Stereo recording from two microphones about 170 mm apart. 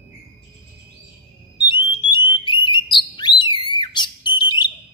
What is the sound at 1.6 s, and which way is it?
Alarm, 25° left (ahead or behind).